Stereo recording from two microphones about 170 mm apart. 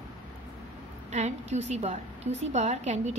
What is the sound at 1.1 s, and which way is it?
A woman's voice, 40° right (ahead or behind).